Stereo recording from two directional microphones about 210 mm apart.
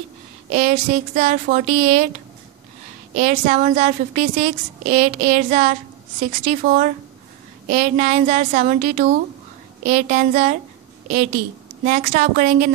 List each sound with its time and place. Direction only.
0.5 s a woman's voice: 35° right (ahead or behind)
3.2 s a woman's voice: 35° right (ahead or behind)
11.8 s a woman's voice: 40° right (ahead or behind)